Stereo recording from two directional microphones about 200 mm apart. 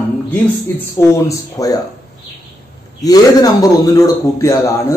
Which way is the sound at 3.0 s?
15° left (ahead or behind).